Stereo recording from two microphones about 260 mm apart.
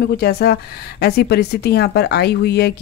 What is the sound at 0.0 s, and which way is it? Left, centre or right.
Speech, left.